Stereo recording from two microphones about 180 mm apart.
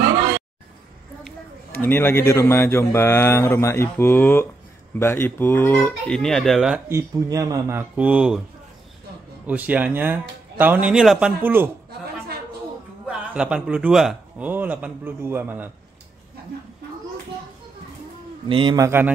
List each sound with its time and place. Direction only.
1.2 s a man's voice: 10° left (ahead or behind)
6.9 s a man's voice: 15° right (ahead or behind)
7.9 s speech: 5° right (ahead or behind)
9.5 s a man's voice: 10° right (ahead or behind)
13.0 s a man's voice: 5° right (ahead or behind)
18.5 s a man's voice: 25° right (ahead or behind)
18.9 s a man's voice: 10° right (ahead or behind)